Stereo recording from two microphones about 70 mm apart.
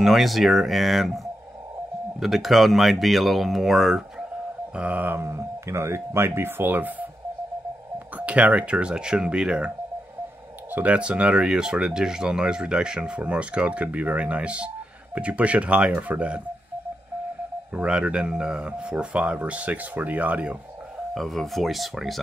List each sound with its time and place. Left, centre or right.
0.0 s speech: centre
4.7 s speech: right
5.3 s speech: right
8.3 s speech: centre
10.7 s speech: right
17.7 s speech: centre
21.1 s speech: centre